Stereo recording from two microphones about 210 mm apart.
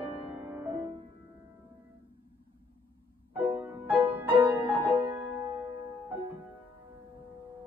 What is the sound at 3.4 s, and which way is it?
Music, 10° right (ahead or behind).